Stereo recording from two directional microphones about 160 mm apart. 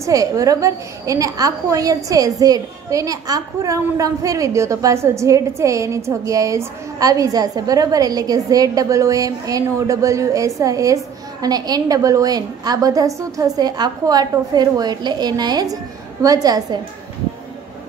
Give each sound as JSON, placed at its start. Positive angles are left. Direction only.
{"t": 0.0, "sound": "a woman's voice", "side_deg": -20}